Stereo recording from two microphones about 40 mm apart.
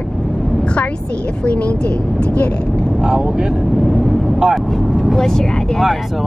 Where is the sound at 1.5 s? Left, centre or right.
Left.